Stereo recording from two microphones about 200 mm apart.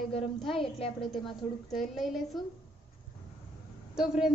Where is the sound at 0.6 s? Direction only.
30° left (ahead or behind).